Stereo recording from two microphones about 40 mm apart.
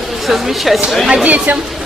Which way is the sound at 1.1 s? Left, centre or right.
Right.